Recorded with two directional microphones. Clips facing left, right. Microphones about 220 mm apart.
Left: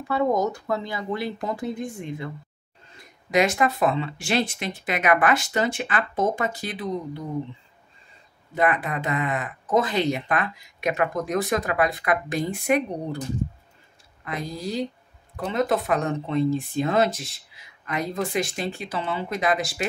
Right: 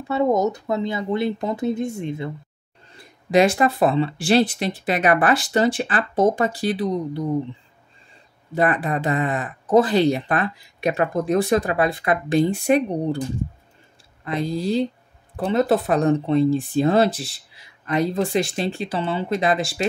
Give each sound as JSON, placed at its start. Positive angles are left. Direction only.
{"t": 0.1, "sound": "speech", "side_deg": -25}
{"t": 8.5, "sound": "speech", "side_deg": -35}
{"t": 14.2, "sound": "speech", "side_deg": -30}